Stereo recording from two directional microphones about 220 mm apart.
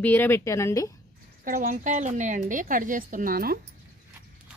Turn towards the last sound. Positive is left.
turn(degrees=-40)  # may be behind; listen again after turning